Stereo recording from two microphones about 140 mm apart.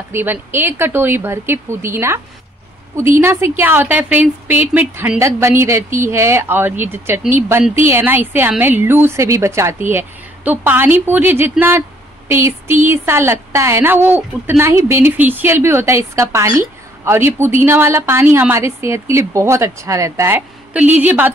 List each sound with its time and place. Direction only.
0.1 s speech: 15° right (ahead or behind)